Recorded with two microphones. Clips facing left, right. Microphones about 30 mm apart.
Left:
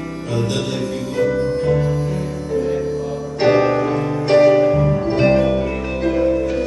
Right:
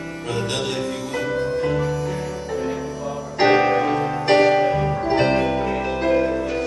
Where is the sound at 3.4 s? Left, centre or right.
Right.